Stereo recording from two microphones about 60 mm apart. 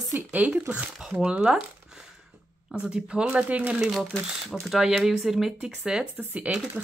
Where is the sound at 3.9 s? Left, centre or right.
Centre.